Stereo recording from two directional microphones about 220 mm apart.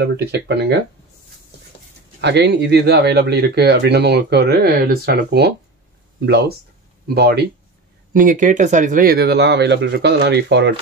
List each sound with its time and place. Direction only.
0.0 s speech: 50° right (ahead or behind)
2.2 s speech: 50° right (ahead or behind)
7.2 s speech: 45° right (ahead or behind)